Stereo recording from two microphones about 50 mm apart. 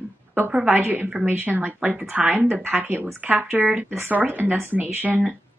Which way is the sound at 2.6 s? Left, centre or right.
Right.